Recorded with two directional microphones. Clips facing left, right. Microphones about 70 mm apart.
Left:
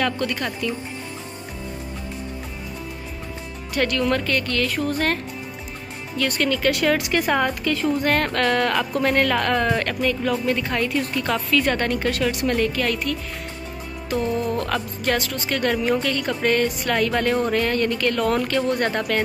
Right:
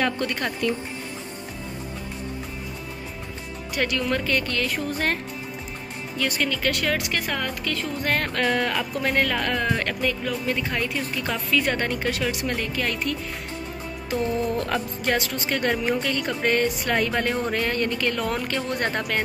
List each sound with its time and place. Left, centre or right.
0.0 s speech: right
3.7 s speech: centre
6.7 s speech: centre
8.1 s speech: centre; by 13.1 s right
14.7 s speech: right